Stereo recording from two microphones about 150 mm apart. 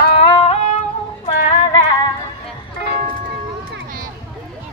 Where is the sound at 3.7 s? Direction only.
65° right (ahead or behind).